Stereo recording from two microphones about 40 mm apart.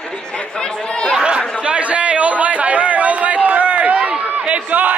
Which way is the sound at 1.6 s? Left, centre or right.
Right.